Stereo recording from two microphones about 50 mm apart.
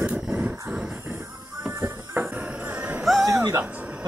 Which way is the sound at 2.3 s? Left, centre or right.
Right.